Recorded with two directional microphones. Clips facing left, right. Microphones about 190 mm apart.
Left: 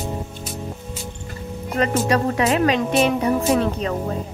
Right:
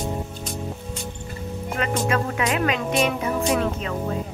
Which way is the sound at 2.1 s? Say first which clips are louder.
Left 4 dB; 35° left (ahead or behind).